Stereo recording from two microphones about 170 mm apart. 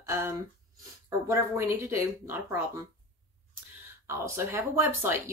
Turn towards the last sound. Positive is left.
turn(degrees=-15)  # may be behind; listen again after turning